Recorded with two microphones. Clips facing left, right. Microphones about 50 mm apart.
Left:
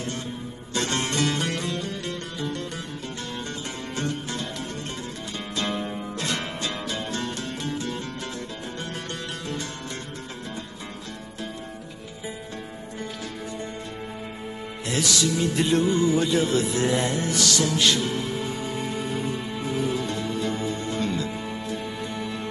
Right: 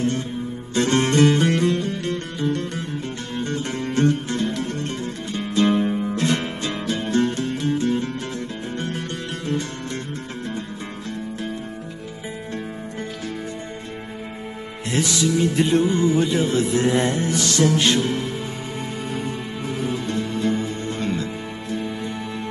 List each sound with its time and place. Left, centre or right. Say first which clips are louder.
0.7 s music: right 8 dB; right
5.5 s music: right 10 dB; right
14.9 s music: right 3 dB; right
20.1 s music: right 4 dB; right